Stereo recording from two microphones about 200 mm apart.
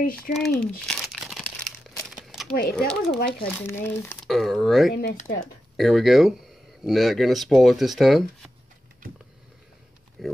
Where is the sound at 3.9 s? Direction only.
15° left (ahead or behind).